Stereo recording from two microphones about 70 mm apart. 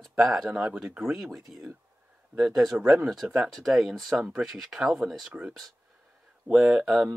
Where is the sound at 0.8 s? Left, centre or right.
Centre.